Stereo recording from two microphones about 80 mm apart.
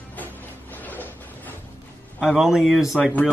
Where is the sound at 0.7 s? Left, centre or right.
Left.